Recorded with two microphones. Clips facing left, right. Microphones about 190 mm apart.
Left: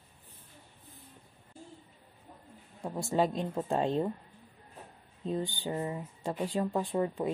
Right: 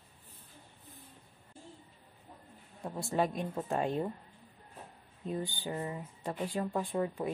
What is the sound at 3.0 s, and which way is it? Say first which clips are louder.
Speech: left 3 dB; 25° left (ahead or behind).